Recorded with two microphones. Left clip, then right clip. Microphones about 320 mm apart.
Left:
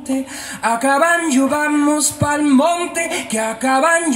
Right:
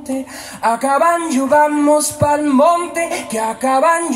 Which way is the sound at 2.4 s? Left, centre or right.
Centre.